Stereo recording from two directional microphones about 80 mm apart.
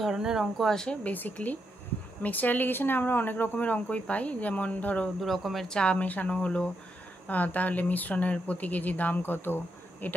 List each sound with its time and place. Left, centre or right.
0.0 s speech: centre
1.1 s speech: left
5.2 s speech: centre; by 10.1 s left